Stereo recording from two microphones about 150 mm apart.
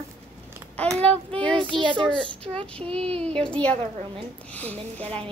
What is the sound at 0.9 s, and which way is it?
Speech, 10° left (ahead or behind).